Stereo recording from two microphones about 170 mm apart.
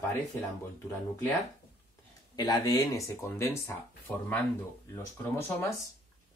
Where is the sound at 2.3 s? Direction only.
25° left (ahead or behind).